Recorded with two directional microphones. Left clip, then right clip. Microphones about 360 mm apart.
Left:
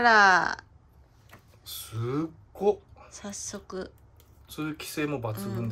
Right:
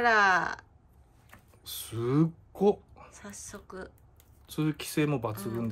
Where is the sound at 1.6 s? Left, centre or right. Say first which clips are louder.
Right 2 dB; right.